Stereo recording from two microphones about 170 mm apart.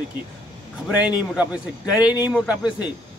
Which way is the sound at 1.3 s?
5° right (ahead or behind).